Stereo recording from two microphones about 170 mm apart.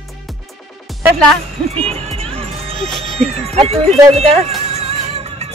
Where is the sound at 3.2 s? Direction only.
40° right (ahead or behind).